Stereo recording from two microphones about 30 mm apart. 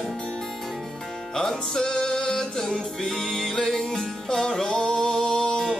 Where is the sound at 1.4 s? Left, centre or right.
Left.